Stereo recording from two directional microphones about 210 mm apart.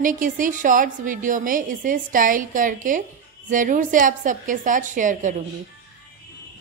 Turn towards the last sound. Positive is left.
turn(degrees=-35)  # may be behind; listen again after turning